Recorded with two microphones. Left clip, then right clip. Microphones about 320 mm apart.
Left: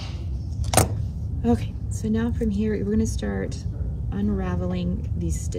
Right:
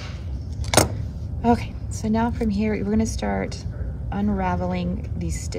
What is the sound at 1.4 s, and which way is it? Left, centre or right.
A woman's voice, centre.